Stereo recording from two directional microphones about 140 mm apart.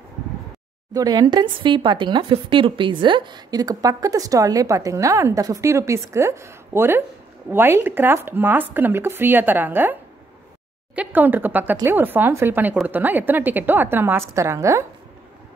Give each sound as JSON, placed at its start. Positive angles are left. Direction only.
{"t": 0.9, "sound": "speech", "side_deg": -25}
{"t": 11.0, "sound": "speech", "side_deg": -15}